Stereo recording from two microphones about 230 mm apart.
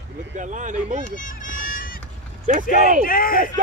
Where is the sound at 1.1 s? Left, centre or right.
Left.